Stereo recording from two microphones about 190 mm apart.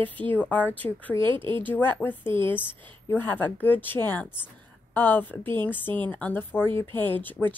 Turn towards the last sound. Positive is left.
turn(degrees=10)  # may be behind; listen again after turning